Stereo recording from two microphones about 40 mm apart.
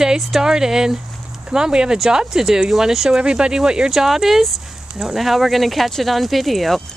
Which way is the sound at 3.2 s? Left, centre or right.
Right.